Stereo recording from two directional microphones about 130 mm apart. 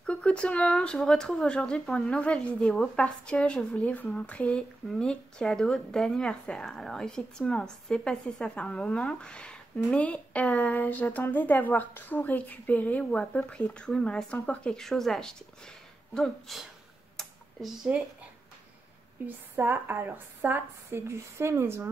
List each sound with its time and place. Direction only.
0.0 s speech: 10° left (ahead or behind)
17.2 s a sound: 5° right (ahead or behind)
19.2 s a woman's voice: 15° right (ahead or behind)